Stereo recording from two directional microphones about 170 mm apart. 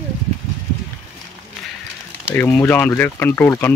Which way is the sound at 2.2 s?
10° left (ahead or behind).